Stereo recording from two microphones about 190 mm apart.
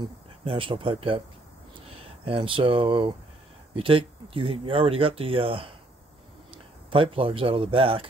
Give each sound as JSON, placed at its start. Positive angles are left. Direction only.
{"t": 0.0, "sound": "speech", "side_deg": -30}